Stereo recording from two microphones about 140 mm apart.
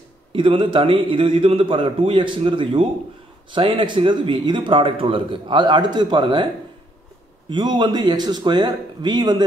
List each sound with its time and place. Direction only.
0.3 s a man's voice: 35° right (ahead or behind)
7.4 s a man's voice: 30° right (ahead or behind)